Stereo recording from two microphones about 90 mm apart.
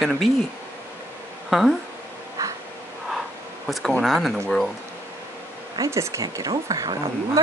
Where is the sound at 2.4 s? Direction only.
35° right (ahead or behind).